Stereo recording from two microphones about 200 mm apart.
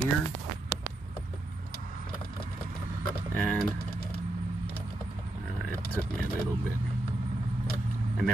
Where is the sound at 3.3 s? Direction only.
5° left (ahead or behind).